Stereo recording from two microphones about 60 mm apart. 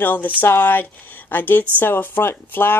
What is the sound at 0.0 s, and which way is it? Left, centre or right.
Speech, left.